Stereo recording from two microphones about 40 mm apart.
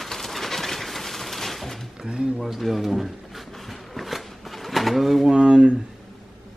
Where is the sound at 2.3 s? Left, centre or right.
Centre.